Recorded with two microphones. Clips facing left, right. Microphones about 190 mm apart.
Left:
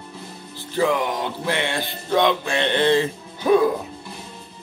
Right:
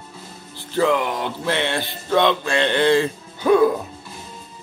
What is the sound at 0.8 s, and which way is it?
Speech, 15° left (ahead or behind).